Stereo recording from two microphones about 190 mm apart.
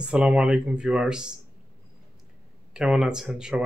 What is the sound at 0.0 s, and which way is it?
Speech, 5° right (ahead or behind).